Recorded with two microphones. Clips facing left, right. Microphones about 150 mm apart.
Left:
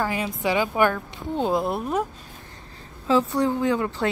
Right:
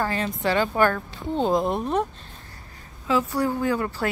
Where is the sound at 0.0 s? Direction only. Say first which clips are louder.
Even; 10° left (ahead or behind).